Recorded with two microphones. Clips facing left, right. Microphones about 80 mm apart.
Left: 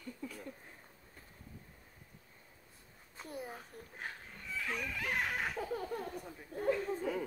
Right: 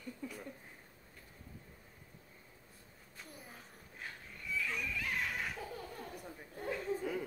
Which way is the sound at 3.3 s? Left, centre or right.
Left.